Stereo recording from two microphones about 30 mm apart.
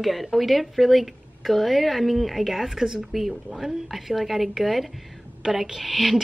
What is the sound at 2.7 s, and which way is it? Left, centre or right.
Speech, centre.